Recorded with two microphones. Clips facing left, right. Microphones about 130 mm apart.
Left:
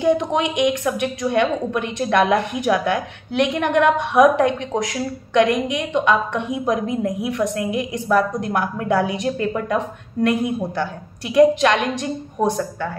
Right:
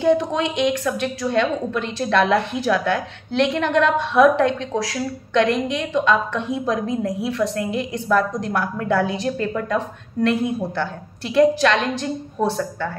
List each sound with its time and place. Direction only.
0.0 s a woman's voice: 20° left (ahead or behind)